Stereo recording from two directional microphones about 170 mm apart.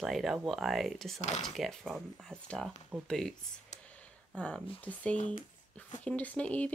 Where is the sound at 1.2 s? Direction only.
40° left (ahead or behind).